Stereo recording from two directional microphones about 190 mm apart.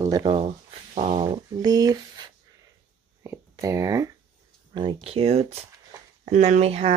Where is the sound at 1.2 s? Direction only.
20° right (ahead or behind).